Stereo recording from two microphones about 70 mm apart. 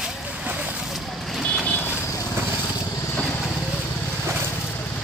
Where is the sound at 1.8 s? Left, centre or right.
Left.